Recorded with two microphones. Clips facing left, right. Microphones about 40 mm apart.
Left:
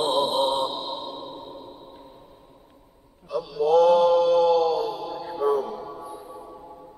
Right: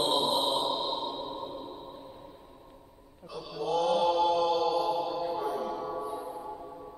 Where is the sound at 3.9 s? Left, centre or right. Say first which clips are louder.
Left 8 dB; centre.